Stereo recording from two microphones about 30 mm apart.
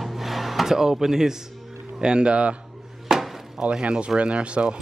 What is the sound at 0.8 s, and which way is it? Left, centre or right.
Speech, centre.